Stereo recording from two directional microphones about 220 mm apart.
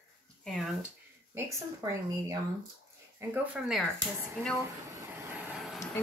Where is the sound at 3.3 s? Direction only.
5° right (ahead or behind).